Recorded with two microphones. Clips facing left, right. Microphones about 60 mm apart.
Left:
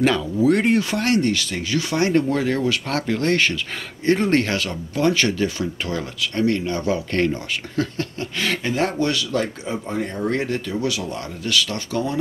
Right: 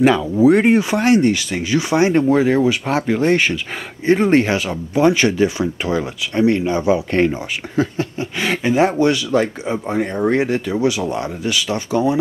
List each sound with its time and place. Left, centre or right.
0.0 s speech: centre